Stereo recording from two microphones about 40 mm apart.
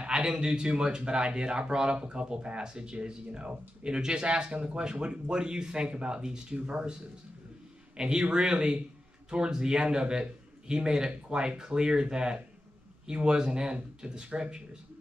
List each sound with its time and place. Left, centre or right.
0.0 s a man's voice: right
8.0 s a man's voice: right